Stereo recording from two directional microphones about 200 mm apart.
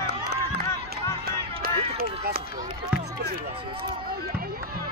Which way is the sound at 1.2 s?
45° right (ahead or behind).